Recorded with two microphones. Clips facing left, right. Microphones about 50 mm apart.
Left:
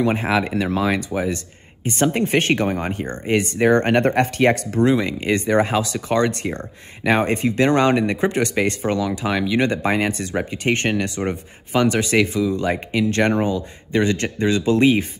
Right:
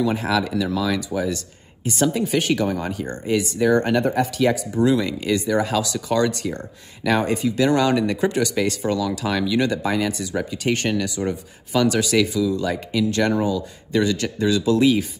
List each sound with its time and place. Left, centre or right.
0.0 s speech: left
4.8 s speech: left